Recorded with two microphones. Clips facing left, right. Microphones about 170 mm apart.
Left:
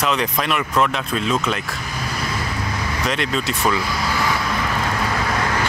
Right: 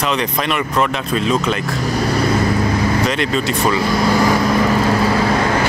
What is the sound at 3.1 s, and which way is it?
Speech, centre (ahead or behind).